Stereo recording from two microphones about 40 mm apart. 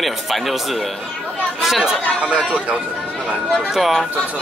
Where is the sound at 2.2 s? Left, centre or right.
Right.